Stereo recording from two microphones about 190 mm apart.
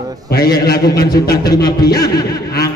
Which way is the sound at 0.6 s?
55° left (ahead or behind).